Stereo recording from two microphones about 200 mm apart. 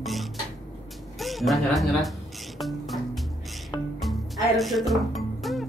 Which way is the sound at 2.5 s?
Centre (ahead or behind).